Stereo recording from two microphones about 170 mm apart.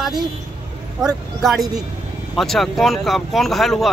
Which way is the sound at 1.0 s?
25° right (ahead or behind).